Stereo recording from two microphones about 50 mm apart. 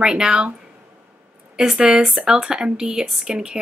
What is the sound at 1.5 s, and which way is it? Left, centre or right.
Speech, centre.